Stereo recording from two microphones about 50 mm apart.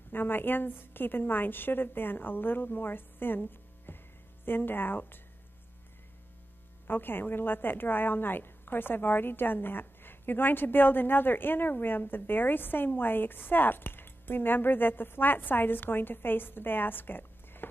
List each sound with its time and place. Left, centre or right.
0.1 s a woman's voice: left
6.9 s a woman's voice: left